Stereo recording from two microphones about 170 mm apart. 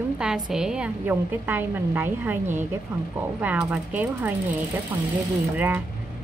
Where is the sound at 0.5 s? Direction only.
5° right (ahead or behind).